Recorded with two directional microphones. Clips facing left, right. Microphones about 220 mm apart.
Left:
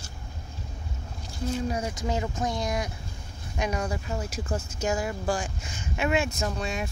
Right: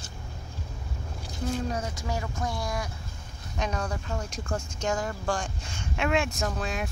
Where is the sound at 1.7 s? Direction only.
10° left (ahead or behind).